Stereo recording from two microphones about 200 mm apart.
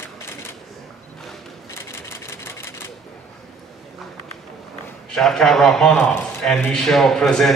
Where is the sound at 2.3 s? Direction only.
10° left (ahead or behind).